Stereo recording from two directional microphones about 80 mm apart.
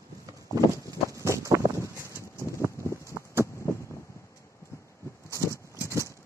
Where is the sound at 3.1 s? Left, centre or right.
Right.